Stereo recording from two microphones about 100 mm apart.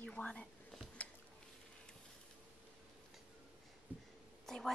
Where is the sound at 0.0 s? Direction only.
10° left (ahead or behind).